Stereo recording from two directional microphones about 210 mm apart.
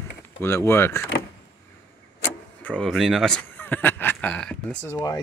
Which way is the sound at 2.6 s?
5° left (ahead or behind).